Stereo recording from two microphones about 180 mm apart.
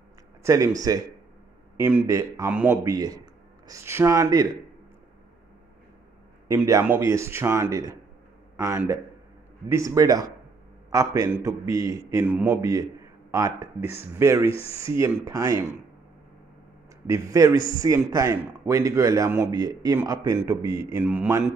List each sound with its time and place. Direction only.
0.4 s a man's voice: 15° right (ahead or behind)
6.4 s a man's voice: 15° right (ahead or behind)
14.5 s speech: 35° left (ahead or behind)
14.8 s a man's voice: 15° right (ahead or behind)
17.0 s a man's voice: 15° right (ahead or behind)